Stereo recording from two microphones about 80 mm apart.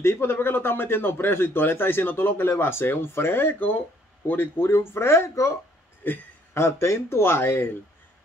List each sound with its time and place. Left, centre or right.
0.0 s speech: left